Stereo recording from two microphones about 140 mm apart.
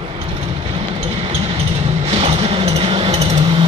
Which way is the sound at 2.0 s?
50° right (ahead or behind).